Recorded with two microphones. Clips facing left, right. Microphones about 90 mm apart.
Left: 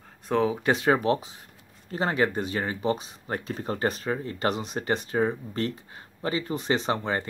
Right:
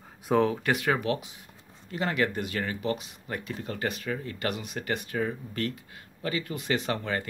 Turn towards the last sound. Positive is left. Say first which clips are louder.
# left 3 dB
turn(degrees=25)  # may be behind; listen again after turning